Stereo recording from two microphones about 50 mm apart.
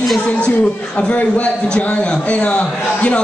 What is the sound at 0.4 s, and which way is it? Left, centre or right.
Speech, left.